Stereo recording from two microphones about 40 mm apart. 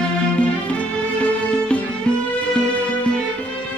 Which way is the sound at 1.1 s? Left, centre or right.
Left.